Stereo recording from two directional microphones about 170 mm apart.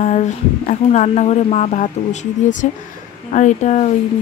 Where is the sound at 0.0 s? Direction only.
45° left (ahead or behind).